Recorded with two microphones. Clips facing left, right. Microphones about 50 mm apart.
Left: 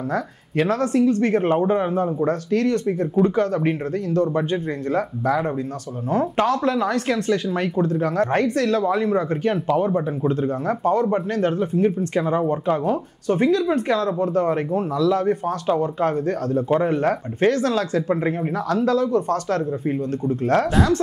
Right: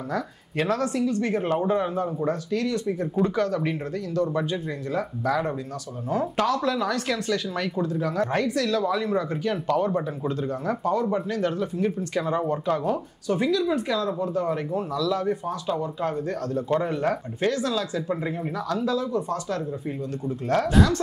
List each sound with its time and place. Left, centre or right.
0.7 s speech: left
1.7 s speech: left
2.2 s speech: left
9.7 s speech: centre
10.7 s speech: left
20.2 s speech: left